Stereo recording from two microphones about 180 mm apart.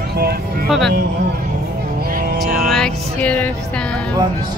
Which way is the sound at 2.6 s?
Centre (ahead or behind).